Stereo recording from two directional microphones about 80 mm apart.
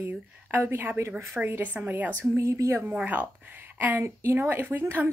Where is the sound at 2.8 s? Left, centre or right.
Right.